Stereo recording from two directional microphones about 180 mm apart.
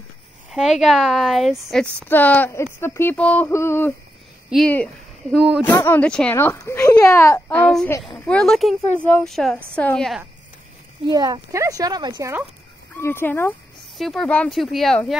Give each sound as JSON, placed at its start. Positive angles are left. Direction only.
{"t": 0.5, "sound": "a woman's voice", "side_deg": 0}
{"t": 5.7, "sound": "a woman's voice", "side_deg": 10}
{"t": 11.1, "sound": "speech", "side_deg": -20}
{"t": 12.9, "sound": "a woman's voice", "side_deg": 10}